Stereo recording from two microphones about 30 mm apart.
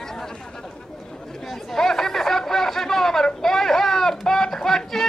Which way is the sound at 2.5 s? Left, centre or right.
Centre.